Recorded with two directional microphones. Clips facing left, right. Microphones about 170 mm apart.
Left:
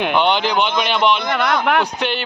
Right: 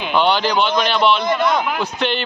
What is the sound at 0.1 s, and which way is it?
Speech, 20° left (ahead or behind).